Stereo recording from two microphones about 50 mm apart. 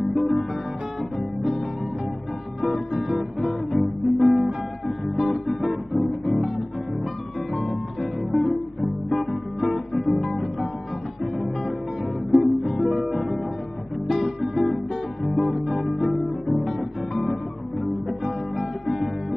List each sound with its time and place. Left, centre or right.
0.1 s guitar: centre
2.6 s guitar: centre
5.0 s music: centre
9.1 s guitar: centre
11.3 s music: centre
14.0 s guitar: centre
18.6 s music: centre